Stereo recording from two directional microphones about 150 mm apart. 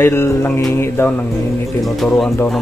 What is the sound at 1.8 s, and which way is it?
Speech, centre (ahead or behind).